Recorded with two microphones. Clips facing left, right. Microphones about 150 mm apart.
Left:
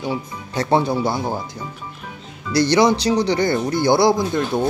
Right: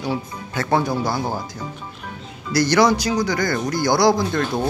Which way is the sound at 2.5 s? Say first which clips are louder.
Left 1 dB; 25° left (ahead or behind).